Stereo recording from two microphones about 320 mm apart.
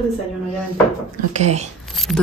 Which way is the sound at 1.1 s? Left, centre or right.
Right.